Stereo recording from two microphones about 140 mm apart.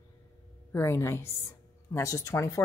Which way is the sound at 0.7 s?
20° left (ahead or behind).